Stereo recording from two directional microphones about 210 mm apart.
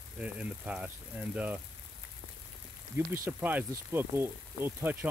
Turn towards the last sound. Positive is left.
turn(degrees=-10)  # may be behind; listen again after turning